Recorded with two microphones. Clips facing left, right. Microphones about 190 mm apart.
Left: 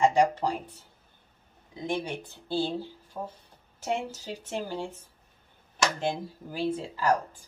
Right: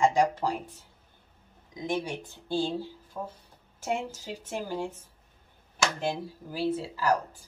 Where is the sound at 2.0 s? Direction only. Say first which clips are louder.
Even; 15° right (ahead or behind).